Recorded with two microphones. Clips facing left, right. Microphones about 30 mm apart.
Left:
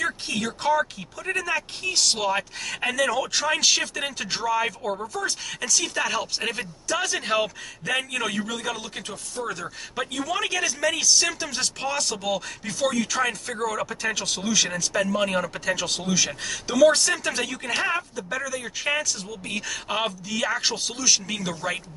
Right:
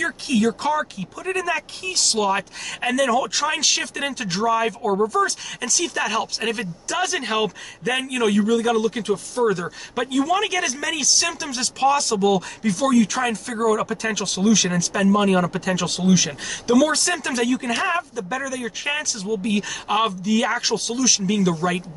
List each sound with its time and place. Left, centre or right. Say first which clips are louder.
0.0 s speech: right 6 dB; centre
9.4 s speech: right 9 dB; centre
9.9 s speech: right 7 dB; centre
17.3 s speech: right 5 dB; centre